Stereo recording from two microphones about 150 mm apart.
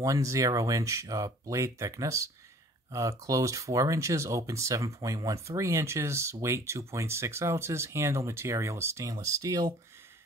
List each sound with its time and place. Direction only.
0.0 s speech: 20° right (ahead or behind)